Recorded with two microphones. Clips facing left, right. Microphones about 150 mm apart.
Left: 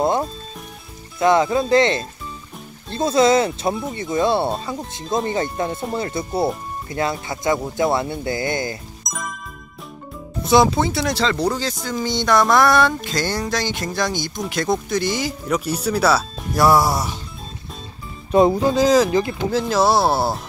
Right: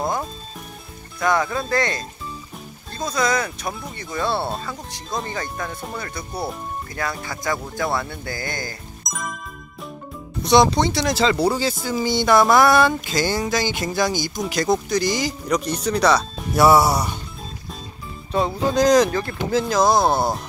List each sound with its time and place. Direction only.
0.0 s music: 25° left (ahead or behind)
1.2 s speech: 25° left (ahead or behind)
9.0 s jingle: centre (ahead or behind)
10.4 s speech: 5° left (ahead or behind)
18.7 s speech: 5° left (ahead or behind)